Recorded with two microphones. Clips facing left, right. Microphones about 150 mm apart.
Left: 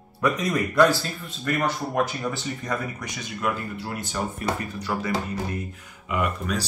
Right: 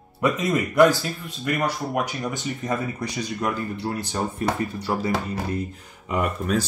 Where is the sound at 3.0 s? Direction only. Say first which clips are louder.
Right 3 dB; 35° right (ahead or behind).